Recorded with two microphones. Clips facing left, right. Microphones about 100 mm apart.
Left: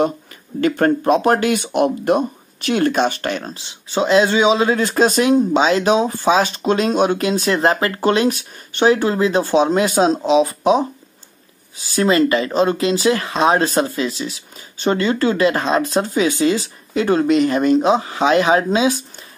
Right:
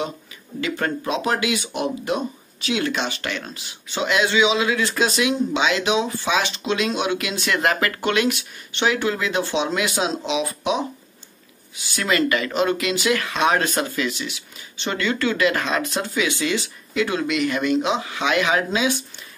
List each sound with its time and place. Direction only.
0.6 s speech: 45° left (ahead or behind)